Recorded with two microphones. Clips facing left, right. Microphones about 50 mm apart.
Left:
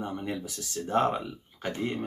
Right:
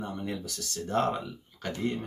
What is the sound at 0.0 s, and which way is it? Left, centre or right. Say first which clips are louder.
Speech: left 2 dB; centre.